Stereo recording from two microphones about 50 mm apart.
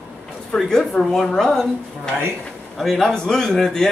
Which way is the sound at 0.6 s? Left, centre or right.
Centre.